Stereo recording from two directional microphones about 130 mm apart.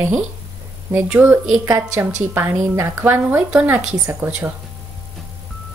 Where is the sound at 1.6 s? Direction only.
25° right (ahead or behind).